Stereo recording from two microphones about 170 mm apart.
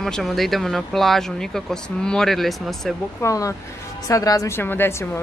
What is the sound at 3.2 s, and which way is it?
A woman's voice, 20° left (ahead or behind).